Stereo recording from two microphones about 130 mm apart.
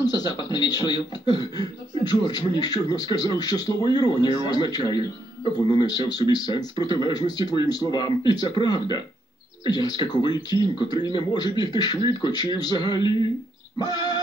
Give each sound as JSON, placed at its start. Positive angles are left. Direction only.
{"t": 0.0, "sound": "a man's voice", "side_deg": 30}
{"t": 13.7, "sound": "music", "side_deg": 30}